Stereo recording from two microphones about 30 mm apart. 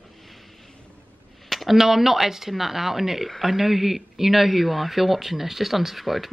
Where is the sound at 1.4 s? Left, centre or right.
Centre.